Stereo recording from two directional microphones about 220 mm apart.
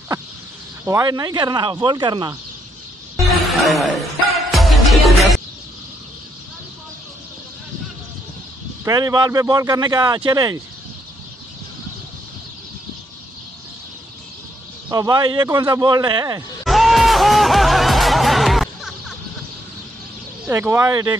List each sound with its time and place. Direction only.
0.8 s speech: 15° right (ahead or behind)
3.2 s a sound: centre (ahead or behind)
4.5 s music: centre (ahead or behind)
8.8 s a man's voice: 20° right (ahead or behind)
14.9 s speech: 15° right (ahead or behind)
16.6 s music: centre (ahead or behind)
20.4 s a man's voice: 10° right (ahead or behind)